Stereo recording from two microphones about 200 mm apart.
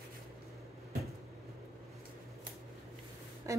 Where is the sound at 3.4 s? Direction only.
15° right (ahead or behind).